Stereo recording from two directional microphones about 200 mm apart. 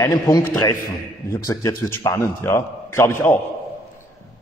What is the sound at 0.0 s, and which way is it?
A man's voice, 20° left (ahead or behind).